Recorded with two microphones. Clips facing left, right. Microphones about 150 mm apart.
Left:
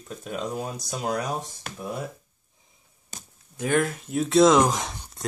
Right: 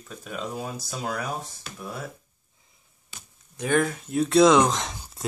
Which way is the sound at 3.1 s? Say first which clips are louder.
Left 4 dB; 45° left (ahead or behind).